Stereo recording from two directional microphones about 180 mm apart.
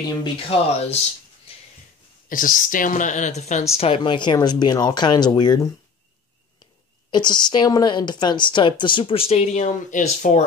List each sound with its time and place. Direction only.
0.2 s speech: 30° left (ahead or behind)
2.2 s a woman's voice: 50° left (ahead or behind); by 5.7 s 25° left (ahead or behind)
7.1 s a woman's voice: 25° left (ahead or behind); by 10.4 s 45° left (ahead or behind)